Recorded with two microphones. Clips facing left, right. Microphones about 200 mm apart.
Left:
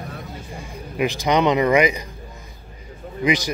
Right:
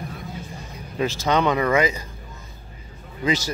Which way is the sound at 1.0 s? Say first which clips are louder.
Left 2 dB; 15° left (ahead or behind).